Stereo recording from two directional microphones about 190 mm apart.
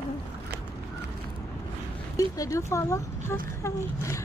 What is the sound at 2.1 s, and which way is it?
Speech, 15° left (ahead or behind).